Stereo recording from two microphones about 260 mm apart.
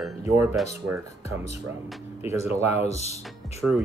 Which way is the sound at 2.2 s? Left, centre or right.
Centre.